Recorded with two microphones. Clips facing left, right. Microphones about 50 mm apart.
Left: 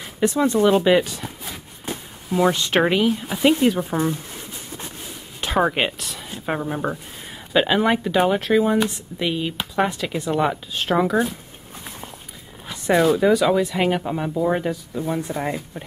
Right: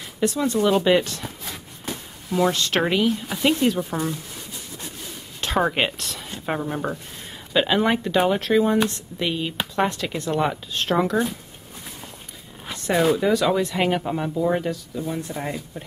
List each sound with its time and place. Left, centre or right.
0.2 s speech: centre
0.8 s a sound: centre
1.9 s speech: centre
5.4 s speech: centre
12.7 s zipper: centre
13.1 s speech: centre
15.0 s speech: left